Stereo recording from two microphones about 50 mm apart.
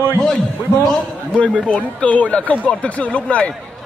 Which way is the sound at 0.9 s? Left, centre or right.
Left.